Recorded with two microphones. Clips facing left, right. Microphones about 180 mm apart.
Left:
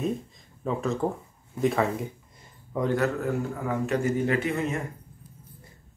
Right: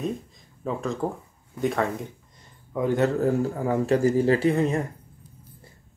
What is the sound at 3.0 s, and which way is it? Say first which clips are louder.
A man's voice: right 5 dB; 35° right (ahead or behind).